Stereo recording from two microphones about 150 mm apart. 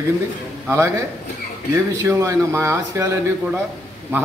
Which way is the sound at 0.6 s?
20° right (ahead or behind).